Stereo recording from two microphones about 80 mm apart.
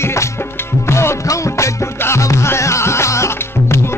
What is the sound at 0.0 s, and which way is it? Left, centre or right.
Music, left.